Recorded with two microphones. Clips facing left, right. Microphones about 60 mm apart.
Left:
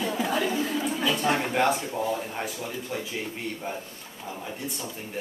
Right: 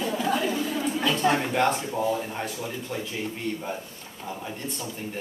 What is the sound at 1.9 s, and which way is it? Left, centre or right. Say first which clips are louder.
Speech: right 2 dB; centre.